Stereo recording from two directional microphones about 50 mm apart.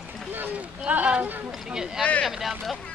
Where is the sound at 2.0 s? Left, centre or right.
Left.